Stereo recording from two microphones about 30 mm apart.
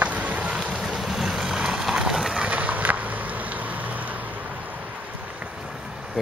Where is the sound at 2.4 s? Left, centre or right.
Right.